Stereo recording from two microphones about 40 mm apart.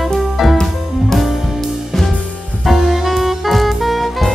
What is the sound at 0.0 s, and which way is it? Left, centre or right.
Music, centre.